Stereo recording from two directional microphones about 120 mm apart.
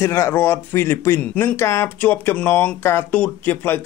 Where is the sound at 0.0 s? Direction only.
20° left (ahead or behind).